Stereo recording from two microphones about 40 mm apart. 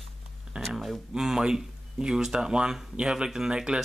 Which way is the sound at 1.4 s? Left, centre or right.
Centre.